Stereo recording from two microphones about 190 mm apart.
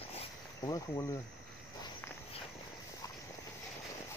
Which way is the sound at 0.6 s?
20° left (ahead or behind).